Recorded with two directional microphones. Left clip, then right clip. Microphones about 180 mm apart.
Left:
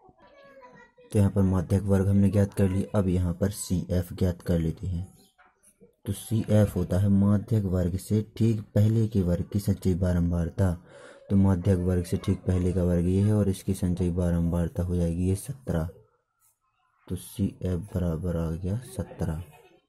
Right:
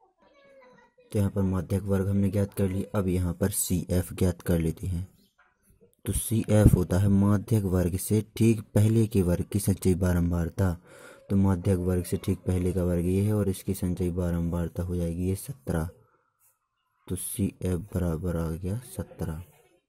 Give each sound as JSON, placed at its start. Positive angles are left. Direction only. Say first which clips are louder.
{"t": 1.0, "sound": "speech", "louder": "left 3 dB", "side_deg": -15}
{"t": 6.0, "sound": "speech", "louder": "right 1 dB", "side_deg": -35}
{"t": 17.0, "sound": "speech", "louder": "right 1 dB", "side_deg": -35}